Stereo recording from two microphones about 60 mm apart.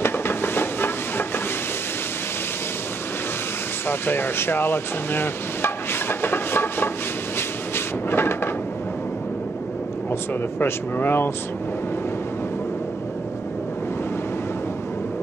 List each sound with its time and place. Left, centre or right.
0.0 s a sound: left
3.8 s speech: left
7.3 s cupboard open or close: left
10.6 s speech: left